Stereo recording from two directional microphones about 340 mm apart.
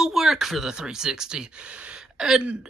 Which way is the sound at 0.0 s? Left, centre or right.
Centre.